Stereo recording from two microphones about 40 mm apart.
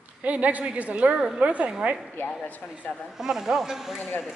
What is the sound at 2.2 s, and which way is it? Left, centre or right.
Speech, left.